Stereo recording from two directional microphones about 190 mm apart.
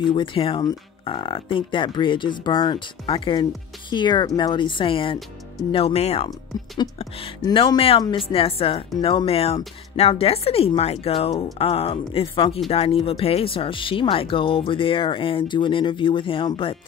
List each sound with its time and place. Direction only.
0.0 s speech: 25° left (ahead or behind)